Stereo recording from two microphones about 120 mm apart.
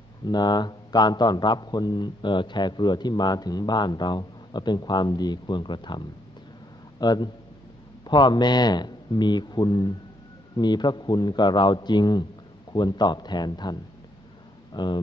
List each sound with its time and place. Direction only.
0.3 s a man's voice: 35° left (ahead or behind)